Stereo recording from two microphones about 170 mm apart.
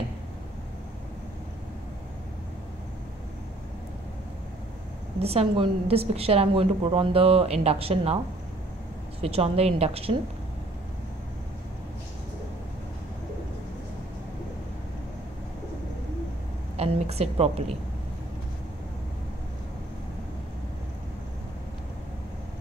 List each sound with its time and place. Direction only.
5.2 s a woman's voice: 35° right (ahead or behind)
9.2 s a woman's voice: 35° right (ahead or behind)
16.7 s a woman's voice: 40° right (ahead or behind)